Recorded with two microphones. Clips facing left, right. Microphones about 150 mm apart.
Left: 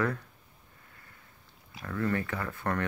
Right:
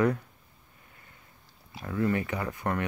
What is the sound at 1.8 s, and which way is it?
Speech, 15° right (ahead or behind).